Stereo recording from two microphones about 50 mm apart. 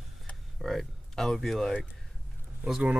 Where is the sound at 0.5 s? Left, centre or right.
Centre.